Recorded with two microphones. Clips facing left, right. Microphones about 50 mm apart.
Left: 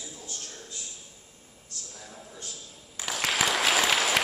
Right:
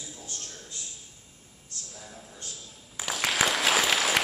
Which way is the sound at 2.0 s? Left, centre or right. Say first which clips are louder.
Left 1 dB; centre.